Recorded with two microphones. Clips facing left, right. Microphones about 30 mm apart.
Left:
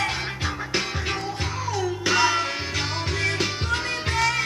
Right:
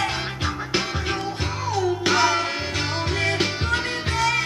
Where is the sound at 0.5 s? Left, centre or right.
Centre.